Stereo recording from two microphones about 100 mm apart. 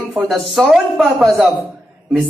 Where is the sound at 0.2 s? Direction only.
Centre (ahead or behind).